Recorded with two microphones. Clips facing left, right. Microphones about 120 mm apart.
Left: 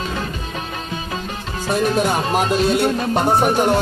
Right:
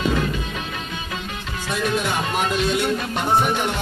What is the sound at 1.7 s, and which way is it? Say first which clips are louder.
Speech: left 5 dB; 40° left (ahead or behind).